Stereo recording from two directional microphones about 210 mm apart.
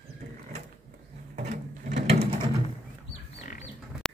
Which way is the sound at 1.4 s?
35° right (ahead or behind).